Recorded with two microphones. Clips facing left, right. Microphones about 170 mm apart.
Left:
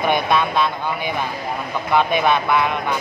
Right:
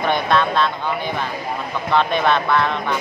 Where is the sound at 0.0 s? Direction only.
10° left (ahead or behind).